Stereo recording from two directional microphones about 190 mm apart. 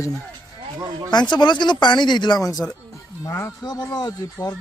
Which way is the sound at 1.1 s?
20° left (ahead or behind).